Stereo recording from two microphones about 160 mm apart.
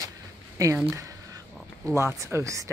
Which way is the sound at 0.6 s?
15° right (ahead or behind).